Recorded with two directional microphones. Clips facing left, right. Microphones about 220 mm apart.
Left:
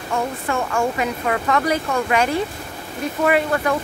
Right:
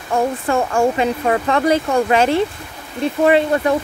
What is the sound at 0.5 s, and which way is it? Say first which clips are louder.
Speech: right 4 dB; 30° right (ahead or behind).